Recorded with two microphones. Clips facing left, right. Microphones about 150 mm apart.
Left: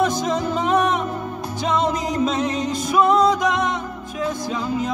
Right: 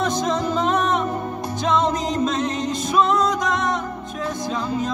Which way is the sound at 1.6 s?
10° left (ahead or behind).